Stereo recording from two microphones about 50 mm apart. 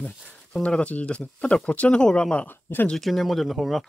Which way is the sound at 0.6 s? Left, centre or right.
Left.